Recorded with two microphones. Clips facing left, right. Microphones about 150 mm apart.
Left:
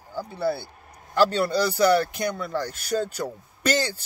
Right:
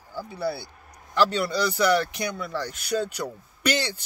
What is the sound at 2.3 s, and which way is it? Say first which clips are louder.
Speech: left 3 dB; 50° left (ahead or behind).